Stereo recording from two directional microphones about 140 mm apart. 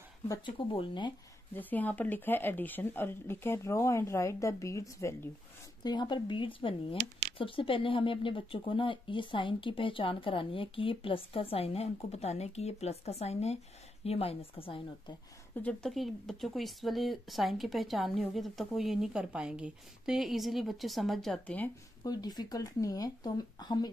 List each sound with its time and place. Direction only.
0.6 s speech: 35° left (ahead or behind)
1.5 s speech: 10° left (ahead or behind)
5.9 s a woman's voice: 30° left (ahead or behind)
15.6 s speech: centre (ahead or behind)
22.0 s speech: 30° left (ahead or behind)